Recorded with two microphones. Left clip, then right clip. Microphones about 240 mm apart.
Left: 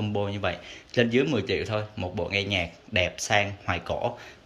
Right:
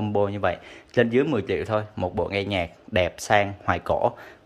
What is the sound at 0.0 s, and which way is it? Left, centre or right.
Speech, right.